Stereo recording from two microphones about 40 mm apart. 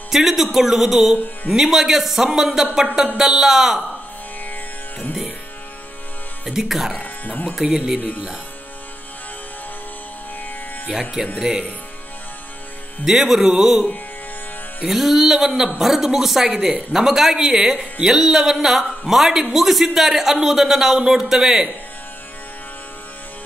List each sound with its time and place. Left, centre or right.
0.1 s a man's voice: centre
6.4 s a man's voice: centre
7.0 s speech: left
7.6 s speech: right
10.9 s a man's voice: centre
13.0 s a man's voice: centre
14.9 s a man's voice: centre